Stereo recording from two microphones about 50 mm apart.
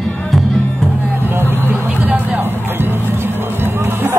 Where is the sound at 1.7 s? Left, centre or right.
Right.